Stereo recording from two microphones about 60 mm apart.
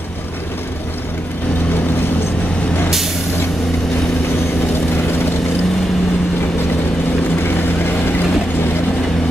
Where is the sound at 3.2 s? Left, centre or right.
Left.